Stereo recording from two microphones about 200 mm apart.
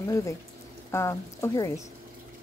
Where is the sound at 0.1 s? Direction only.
15° left (ahead or behind).